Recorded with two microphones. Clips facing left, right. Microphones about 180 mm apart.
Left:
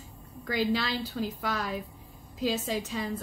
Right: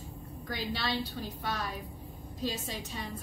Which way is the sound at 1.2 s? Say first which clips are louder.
Left 5 dB; 90° left.